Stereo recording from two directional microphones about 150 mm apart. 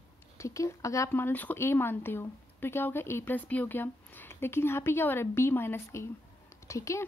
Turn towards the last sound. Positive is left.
turn(degrees=20)  # may be behind; listen again after turning